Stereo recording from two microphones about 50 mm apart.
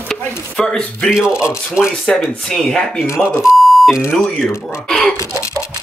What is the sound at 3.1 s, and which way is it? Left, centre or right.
Speech, centre.